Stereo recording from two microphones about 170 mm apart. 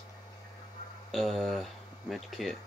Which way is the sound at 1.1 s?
Centre (ahead or behind).